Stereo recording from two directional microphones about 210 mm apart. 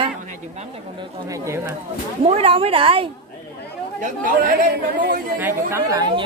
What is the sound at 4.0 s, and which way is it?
Speech, 40° right (ahead or behind).